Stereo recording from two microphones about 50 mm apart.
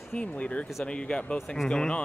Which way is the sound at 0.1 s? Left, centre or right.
Left.